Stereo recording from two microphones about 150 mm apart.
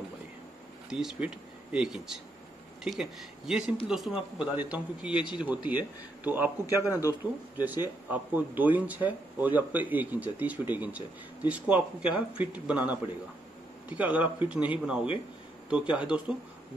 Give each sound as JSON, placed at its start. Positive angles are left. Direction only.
{"t": 0.8, "sound": "speech", "side_deg": -5}
{"t": 6.8, "sound": "speech", "side_deg": 20}
{"t": 7.5, "sound": "speech", "side_deg": -10}